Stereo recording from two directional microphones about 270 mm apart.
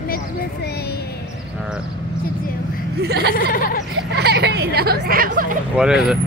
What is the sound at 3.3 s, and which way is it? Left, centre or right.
Speech, left.